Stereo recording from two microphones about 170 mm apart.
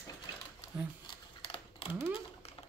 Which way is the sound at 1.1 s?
30° left (ahead or behind).